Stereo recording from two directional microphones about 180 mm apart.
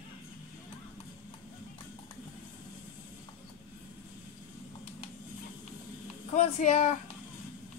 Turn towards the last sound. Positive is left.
turn(degrees=40)  # may be behind; listen again after turning